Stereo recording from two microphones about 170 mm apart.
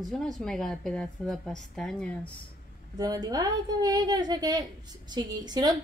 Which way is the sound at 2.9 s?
20° right (ahead or behind).